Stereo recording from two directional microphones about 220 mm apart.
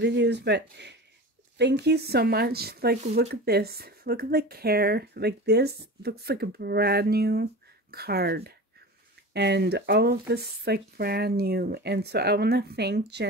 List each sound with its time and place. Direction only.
0.0 s speech: 50° right (ahead or behind)